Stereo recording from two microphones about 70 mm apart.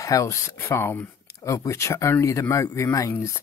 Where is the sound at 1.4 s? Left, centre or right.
Left.